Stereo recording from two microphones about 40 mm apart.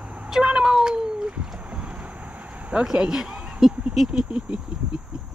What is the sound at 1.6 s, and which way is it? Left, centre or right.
Boat, right.